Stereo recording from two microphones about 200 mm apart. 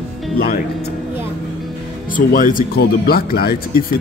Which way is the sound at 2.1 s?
40° left (ahead or behind).